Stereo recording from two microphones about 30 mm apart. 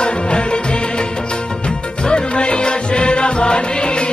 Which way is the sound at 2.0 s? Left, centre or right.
Left.